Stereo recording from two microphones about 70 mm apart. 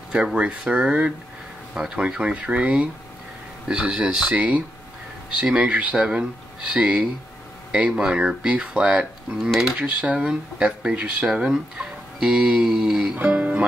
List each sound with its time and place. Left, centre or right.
0.1 s speech: centre
9.4 s speech: centre
9.8 s speech: centre
13.2 s music: right